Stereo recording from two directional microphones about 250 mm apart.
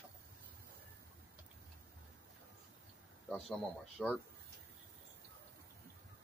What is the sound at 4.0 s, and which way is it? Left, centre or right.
Speech, centre.